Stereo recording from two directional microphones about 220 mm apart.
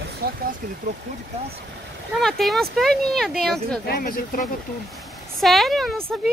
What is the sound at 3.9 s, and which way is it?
Speech, 40° left (ahead or behind).